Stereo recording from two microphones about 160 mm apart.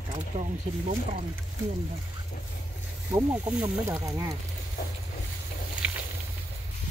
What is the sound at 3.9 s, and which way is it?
Speech, 20° right (ahead or behind).